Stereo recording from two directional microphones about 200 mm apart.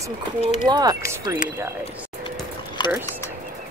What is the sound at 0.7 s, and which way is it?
Speech, 20° right (ahead or behind).